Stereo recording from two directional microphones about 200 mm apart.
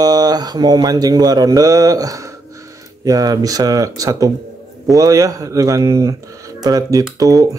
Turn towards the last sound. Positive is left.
turn(degrees=-20)  # may be behind; listen again after turning